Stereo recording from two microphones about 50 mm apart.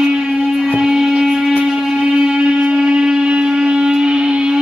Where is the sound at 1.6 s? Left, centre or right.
Centre.